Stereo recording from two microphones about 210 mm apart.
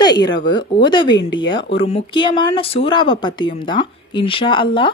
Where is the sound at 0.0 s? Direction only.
20° left (ahead or behind).